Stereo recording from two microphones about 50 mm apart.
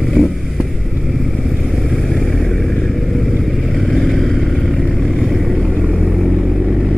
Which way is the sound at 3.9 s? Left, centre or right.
Centre.